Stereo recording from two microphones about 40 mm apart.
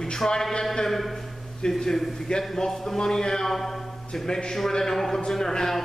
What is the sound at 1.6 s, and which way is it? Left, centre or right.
Speech, left.